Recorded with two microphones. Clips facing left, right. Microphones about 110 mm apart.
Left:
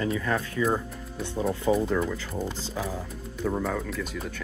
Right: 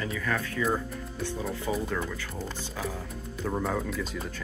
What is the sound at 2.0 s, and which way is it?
Speech, 10° left (ahead or behind).